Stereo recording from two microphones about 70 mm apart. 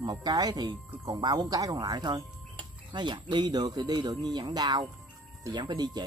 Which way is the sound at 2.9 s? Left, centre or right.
Right.